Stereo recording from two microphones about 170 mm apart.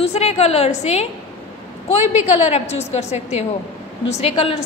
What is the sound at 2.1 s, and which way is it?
A woman's voice, 40° left (ahead or behind).